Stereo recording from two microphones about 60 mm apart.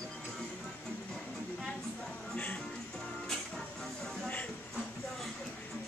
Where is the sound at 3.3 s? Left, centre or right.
Centre.